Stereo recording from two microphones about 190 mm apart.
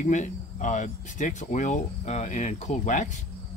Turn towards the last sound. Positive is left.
turn(degrees=40)  # may be behind; listen again after turning